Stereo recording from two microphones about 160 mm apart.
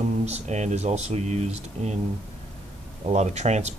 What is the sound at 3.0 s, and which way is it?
Speech, 45° right (ahead or behind).